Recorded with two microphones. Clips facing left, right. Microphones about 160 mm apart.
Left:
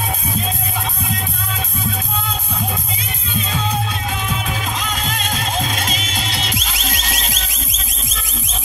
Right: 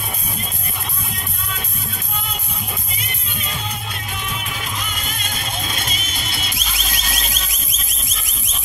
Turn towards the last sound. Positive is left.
turn(degrees=90)